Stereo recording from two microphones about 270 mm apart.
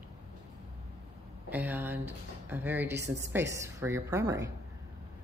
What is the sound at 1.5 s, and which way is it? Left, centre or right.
A woman's voice, centre.